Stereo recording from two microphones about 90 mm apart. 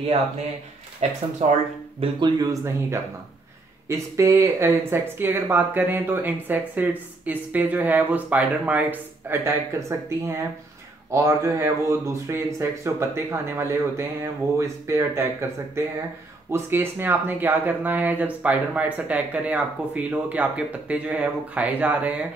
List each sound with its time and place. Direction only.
2.0 s speech: 60° right (ahead or behind)
2.4 s speech: 35° right (ahead or behind); by 22.1 s 15° right (ahead or behind)